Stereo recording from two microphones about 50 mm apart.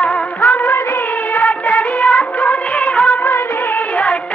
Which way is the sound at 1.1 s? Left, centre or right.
Left.